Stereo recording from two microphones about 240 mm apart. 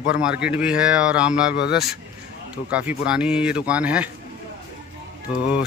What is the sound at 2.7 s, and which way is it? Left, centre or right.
Speech, centre.